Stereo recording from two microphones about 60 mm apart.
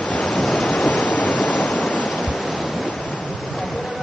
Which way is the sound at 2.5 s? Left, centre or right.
Centre.